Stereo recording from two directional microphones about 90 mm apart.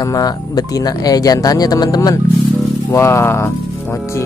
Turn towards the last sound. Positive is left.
turn(degrees=30)  # may be behind; listen again after turning